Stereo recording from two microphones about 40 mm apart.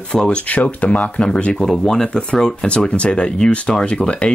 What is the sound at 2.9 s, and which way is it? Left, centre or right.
Speech, left.